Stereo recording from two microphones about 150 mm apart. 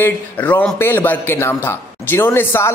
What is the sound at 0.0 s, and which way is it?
A man's voice, 10° left (ahead or behind).